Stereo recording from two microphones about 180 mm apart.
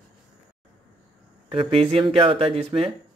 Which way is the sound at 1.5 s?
30° right (ahead or behind).